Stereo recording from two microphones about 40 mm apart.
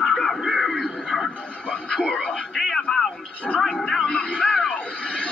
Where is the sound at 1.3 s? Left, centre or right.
Left.